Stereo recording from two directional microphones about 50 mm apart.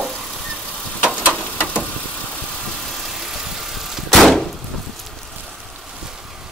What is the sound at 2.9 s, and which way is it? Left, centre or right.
Vehicle, centre.